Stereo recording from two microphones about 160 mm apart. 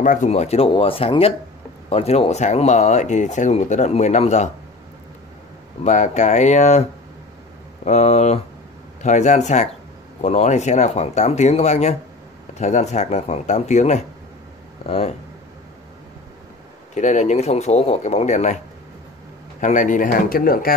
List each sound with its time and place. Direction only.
0.0 s speech: 50° left (ahead or behind)
5.9 s speech: 50° left (ahead or behind)
7.8 s speech: 45° left (ahead or behind)
16.9 s speech: 50° left (ahead or behind)
19.6 s speech: 50° left (ahead or behind)